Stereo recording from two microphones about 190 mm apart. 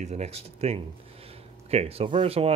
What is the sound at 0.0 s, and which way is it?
Speech, 35° right (ahead or behind).